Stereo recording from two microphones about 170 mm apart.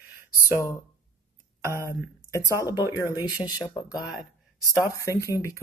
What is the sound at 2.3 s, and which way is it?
Speech, 20° left (ahead or behind).